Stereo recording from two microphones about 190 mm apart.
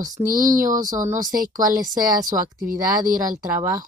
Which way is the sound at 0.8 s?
15° right (ahead or behind).